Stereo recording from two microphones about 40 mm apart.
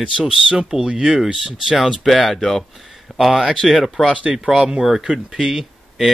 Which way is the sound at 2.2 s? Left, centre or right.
Centre.